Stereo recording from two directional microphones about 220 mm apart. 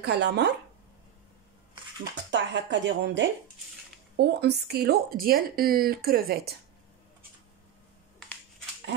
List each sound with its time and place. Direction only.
0.0 s speech: 50° right (ahead or behind)
2.3 s speech: 55° right (ahead or behind)